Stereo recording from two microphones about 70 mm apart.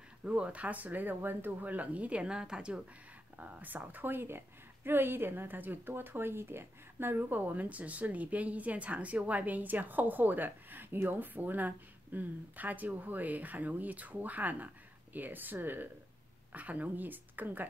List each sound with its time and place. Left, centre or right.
0.2 s a woman's voice: centre
3.3 s a woman's voice: right